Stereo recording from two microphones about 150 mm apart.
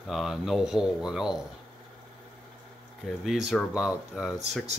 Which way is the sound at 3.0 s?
Centre (ahead or behind).